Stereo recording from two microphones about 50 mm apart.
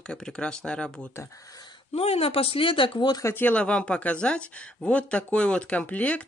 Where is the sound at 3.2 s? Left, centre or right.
Left.